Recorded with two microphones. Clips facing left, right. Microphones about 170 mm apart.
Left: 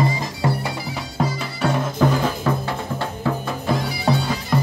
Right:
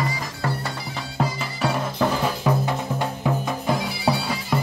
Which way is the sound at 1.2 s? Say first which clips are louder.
Left 2 dB; centre (ahead or behind).